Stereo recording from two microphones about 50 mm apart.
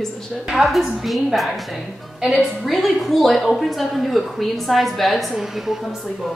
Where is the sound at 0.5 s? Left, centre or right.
Centre.